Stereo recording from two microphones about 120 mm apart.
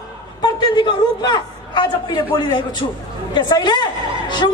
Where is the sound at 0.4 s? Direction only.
40° left (ahead or behind).